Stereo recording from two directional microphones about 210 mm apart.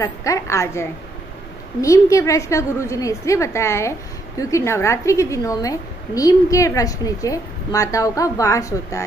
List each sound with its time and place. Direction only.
0.0 s a woman's voice: 15° left (ahead or behind)